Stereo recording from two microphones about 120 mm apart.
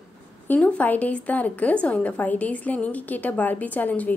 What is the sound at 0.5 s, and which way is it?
A woman's voice, 10° left (ahead or behind).